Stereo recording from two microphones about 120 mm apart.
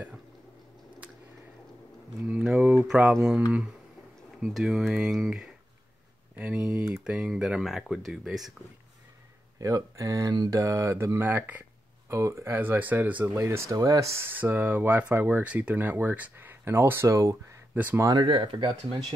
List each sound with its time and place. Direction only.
2.2 s speech: 10° right (ahead or behind)
9.6 s speech: 30° right (ahead or behind)
17.7 s speech: 15° right (ahead or behind)
18.2 s speech: 40° right (ahead or behind)